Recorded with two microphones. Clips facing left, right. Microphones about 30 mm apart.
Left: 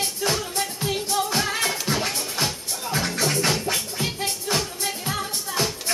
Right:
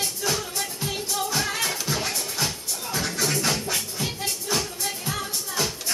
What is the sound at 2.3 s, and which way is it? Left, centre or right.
Music, left.